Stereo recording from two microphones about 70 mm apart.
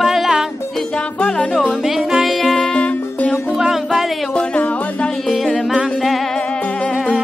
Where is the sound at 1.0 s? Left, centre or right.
Centre.